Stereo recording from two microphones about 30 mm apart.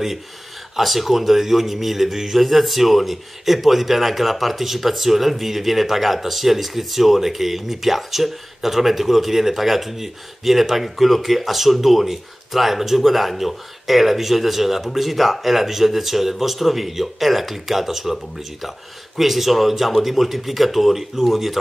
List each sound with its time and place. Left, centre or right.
0.7 s speech: centre
19.1 s speech: centre